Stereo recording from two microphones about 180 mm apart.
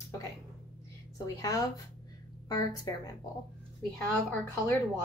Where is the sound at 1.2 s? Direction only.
20° left (ahead or behind).